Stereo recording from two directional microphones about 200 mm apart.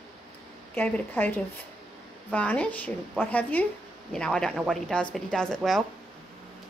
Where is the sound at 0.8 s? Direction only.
10° left (ahead or behind).